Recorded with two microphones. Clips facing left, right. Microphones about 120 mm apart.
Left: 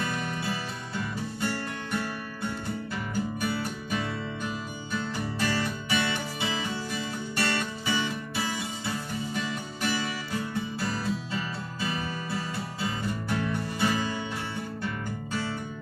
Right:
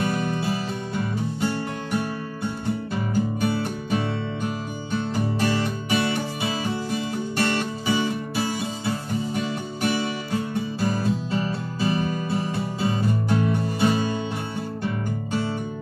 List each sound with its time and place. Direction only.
1.4 s music: 20° right (ahead or behind)
3.4 s music: 25° right (ahead or behind)